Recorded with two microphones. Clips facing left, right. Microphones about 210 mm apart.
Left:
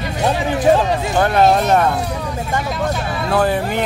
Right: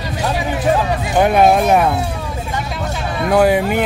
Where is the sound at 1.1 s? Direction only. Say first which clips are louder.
Right 3 dB; 10° right (ahead or behind).